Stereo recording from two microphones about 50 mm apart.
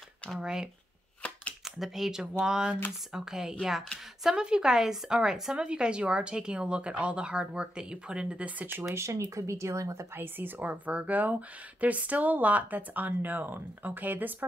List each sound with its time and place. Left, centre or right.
0.4 s a woman's voice: centre
8.8 s speech: right
10.1 s speech: right